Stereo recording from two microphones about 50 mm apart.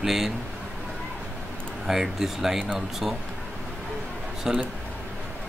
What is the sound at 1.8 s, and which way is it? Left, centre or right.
Speech, centre.